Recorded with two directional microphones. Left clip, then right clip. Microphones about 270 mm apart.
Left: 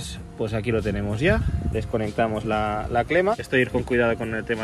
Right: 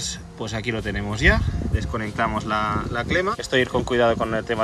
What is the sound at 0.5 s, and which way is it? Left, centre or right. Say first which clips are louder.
Speech: left 1 dB; centre.